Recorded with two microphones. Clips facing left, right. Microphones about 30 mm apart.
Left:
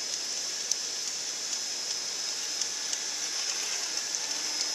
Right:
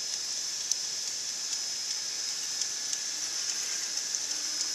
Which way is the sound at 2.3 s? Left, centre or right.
Centre.